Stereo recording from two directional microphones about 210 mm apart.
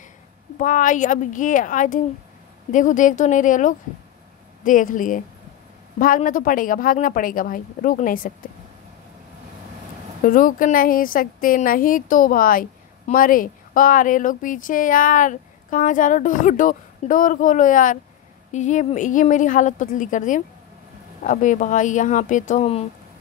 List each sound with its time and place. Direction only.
0.6 s a woman's voice: 40° left (ahead or behind)
10.2 s a woman's voice: 40° left (ahead or behind)